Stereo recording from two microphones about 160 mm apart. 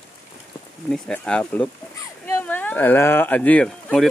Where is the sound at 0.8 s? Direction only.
5° left (ahead or behind).